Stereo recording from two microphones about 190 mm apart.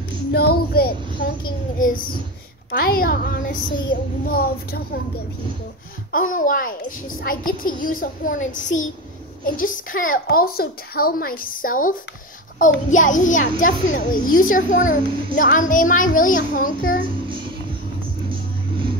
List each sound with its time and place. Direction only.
0.3 s child singing: 55° left (ahead or behind)
1.8 s a child's voice: 45° left (ahead or behind)
6.1 s a child's voice: 45° left (ahead or behind)